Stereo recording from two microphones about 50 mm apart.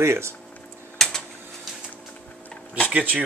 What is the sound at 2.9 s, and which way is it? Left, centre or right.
Speech, right.